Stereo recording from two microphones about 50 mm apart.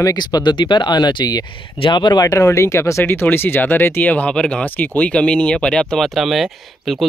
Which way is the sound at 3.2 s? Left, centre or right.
Left.